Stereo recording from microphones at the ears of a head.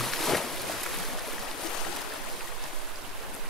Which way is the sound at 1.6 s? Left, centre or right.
Left.